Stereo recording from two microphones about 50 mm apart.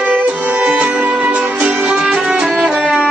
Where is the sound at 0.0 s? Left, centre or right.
Right.